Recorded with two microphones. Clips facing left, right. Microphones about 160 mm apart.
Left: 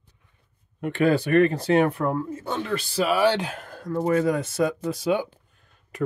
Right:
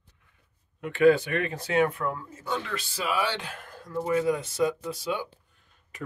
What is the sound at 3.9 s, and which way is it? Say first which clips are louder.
Speech: left 4 dB; 45° left (ahead or behind).